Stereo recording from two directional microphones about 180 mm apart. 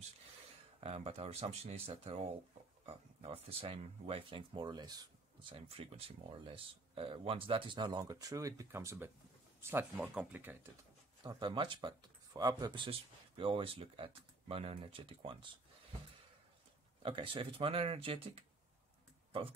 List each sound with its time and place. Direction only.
0.7 s speech: 35° right (ahead or behind); by 10.6 s 10° right (ahead or behind)
11.2 s speech: 25° right (ahead or behind)
17.0 s speech: 30° right (ahead or behind)